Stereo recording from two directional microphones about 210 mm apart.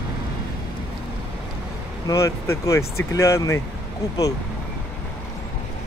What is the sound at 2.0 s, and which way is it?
Speech, 15° left (ahead or behind).